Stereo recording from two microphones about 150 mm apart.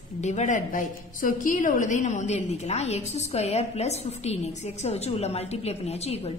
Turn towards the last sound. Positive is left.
turn(degrees=45)  # may be behind; listen again after turning